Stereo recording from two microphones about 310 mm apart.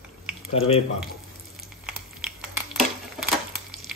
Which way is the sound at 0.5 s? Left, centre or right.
Centre.